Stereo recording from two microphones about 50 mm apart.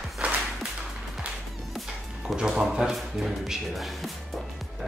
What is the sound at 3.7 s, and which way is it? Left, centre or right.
Speech, centre.